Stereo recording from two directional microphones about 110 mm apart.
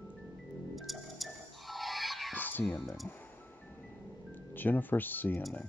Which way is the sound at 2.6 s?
5° left (ahead or behind).